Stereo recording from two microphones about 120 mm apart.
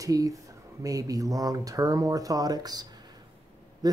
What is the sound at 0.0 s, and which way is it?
Speech, 30° right (ahead or behind).